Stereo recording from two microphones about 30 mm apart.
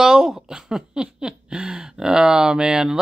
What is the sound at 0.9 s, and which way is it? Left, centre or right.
Speech, right.